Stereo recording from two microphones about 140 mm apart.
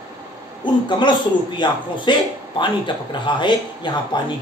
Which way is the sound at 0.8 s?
35° left (ahead or behind).